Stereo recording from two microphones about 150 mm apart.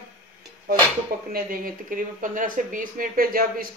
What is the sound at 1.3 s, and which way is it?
Speech, 70° right (ahead or behind).